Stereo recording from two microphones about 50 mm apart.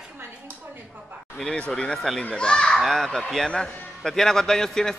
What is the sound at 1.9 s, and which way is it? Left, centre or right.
Speech, centre.